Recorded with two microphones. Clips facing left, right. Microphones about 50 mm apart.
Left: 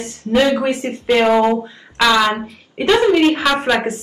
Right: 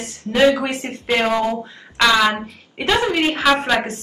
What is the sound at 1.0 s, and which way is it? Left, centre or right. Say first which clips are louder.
Speech: left 5 dB; centre.